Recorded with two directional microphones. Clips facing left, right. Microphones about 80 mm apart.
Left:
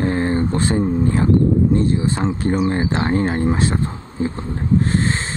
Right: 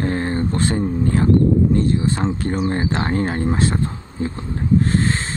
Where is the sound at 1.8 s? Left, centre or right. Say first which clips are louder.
Even; centre.